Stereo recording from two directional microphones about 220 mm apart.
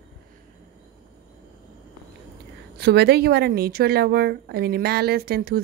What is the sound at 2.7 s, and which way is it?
A woman's voice, 50° right (ahead or behind).